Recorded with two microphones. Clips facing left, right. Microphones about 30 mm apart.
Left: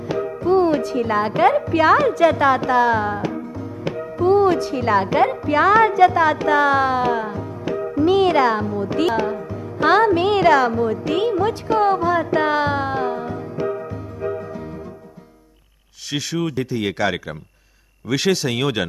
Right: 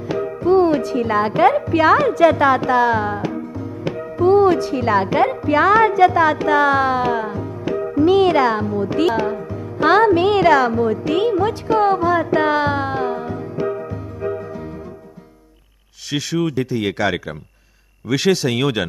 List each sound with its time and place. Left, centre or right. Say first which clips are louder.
0.1 s music: right 2 dB; centre
1.3 s speech: right 1 dB; centre
3.2 s music: right 1 dB; centre
4.2 s speech: right 2 dB; right
16.1 s speech: right 3 dB; right